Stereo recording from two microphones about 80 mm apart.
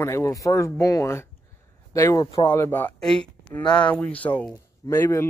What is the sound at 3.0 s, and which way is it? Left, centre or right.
Speech, centre.